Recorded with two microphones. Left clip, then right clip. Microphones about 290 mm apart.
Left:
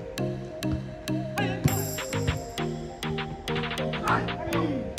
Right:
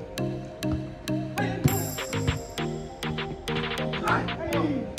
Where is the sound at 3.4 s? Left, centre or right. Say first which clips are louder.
Right 1 dB; centre.